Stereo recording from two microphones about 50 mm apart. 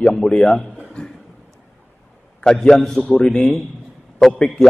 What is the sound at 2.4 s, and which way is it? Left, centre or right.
Speech, centre.